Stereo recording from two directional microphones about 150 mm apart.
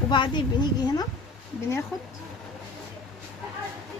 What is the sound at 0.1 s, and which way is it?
Speech, 30° left (ahead or behind).